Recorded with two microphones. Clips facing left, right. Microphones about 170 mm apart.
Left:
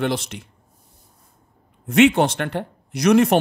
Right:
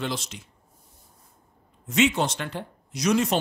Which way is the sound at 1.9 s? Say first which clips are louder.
Left 8 dB; 60° left (ahead or behind).